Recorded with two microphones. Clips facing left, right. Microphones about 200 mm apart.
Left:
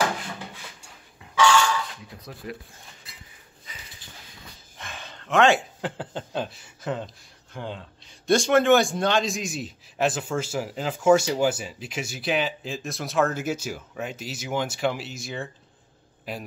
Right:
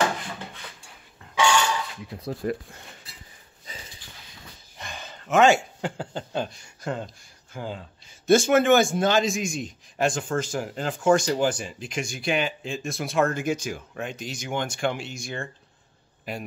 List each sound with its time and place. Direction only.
1.3 s a sound: 15° right (ahead or behind)
2.4 s speech: 45° right (ahead or behind)
4.7 s a man's voice: centre (ahead or behind)